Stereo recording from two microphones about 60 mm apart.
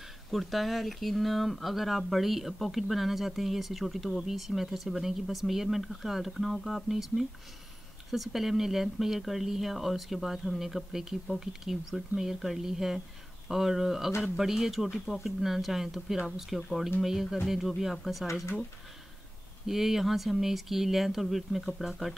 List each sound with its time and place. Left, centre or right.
0.3 s speech: centre
18.2 s speech: left
19.6 s speech: centre